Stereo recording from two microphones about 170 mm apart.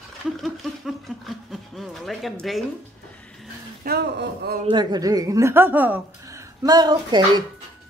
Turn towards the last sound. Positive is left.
turn(degrees=-25)  # may be behind; listen again after turning